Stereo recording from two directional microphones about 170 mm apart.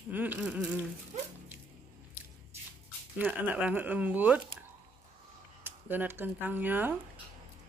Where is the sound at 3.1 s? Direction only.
10° right (ahead or behind).